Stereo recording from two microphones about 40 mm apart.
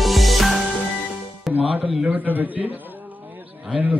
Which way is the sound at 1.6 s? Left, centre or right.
Right.